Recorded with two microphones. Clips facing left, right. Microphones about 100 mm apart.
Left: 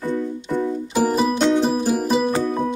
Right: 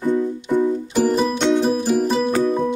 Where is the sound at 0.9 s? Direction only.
5° left (ahead or behind).